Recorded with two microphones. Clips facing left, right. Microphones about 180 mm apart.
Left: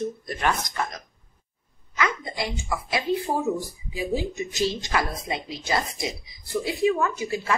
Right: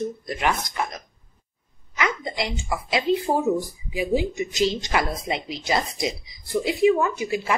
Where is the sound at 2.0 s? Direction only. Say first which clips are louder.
Right 1 dB; 20° right (ahead or behind).